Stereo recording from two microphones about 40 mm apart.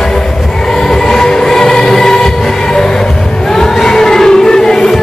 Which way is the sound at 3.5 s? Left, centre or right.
Centre.